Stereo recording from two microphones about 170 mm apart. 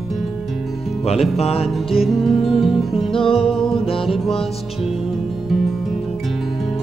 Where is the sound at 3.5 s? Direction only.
Centre (ahead or behind).